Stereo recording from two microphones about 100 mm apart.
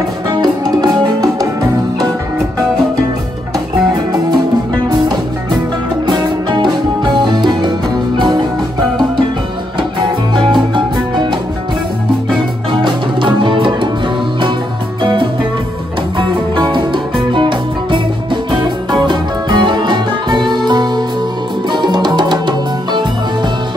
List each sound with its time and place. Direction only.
0.3 s music: 40° right (ahead or behind)
6.0 s music: 50° right (ahead or behind)
9.8 s music: 55° right (ahead or behind)
12.8 s music: 55° right (ahead or behind)
15.0 s music: 55° right (ahead or behind)